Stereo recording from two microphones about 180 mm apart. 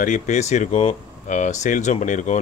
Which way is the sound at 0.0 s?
45° left (ahead or behind).